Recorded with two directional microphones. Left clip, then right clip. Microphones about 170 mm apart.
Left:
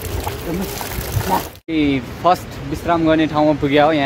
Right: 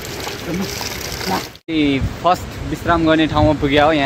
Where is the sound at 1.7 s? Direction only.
5° right (ahead or behind).